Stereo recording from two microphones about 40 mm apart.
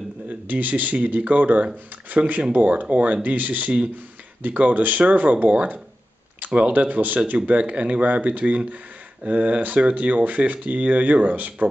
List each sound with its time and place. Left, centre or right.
0.3 s speech: right
7.4 s speech: right